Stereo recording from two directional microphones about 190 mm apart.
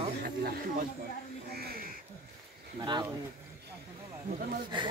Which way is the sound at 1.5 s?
55° right (ahead or behind).